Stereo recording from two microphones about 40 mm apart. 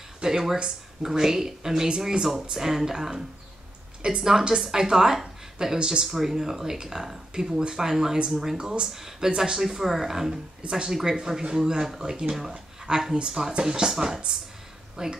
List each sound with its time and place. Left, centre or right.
0.2 s speech: centre